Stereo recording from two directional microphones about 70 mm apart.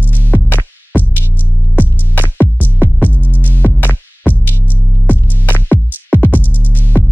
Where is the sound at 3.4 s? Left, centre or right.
Left.